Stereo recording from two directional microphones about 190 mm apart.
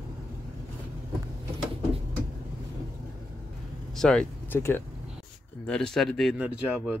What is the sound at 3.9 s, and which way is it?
Speech, 5° left (ahead or behind).